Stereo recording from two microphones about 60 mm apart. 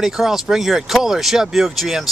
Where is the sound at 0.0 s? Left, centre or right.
Centre.